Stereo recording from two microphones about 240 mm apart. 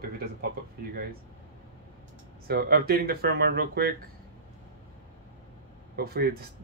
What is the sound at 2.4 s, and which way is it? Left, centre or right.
Speech, right.